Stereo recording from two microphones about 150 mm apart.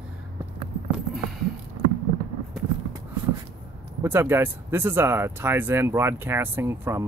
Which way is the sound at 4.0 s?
15° right (ahead or behind).